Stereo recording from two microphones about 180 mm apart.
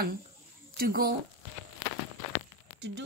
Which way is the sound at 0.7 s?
55° right (ahead or behind).